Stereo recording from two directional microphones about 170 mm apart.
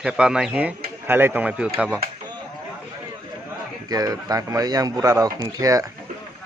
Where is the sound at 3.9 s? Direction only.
20° right (ahead or behind).